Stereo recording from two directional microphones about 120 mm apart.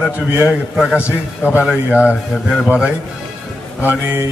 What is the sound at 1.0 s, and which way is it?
Speech, 20° left (ahead or behind).